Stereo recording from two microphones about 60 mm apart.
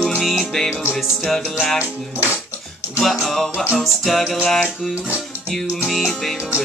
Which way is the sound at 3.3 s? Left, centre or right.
Centre.